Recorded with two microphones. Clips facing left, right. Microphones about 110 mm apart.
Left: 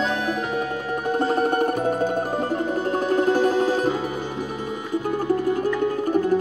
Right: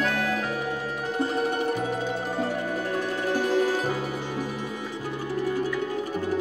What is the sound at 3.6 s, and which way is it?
Music, 20° left (ahead or behind).